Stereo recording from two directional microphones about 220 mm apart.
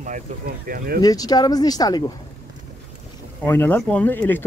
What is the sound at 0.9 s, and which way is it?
Speech, 15° left (ahead or behind).